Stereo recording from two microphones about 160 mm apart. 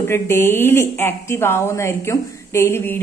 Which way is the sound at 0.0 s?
15° left (ahead or behind).